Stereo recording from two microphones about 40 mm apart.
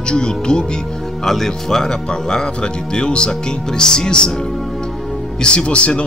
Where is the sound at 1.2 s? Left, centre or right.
Centre.